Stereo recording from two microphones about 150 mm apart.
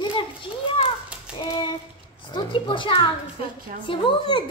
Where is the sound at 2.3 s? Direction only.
35° left (ahead or behind).